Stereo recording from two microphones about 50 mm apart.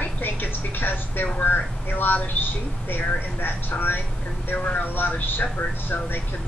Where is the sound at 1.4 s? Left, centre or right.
Left.